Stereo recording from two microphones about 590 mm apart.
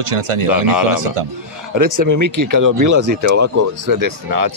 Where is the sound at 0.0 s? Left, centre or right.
Right.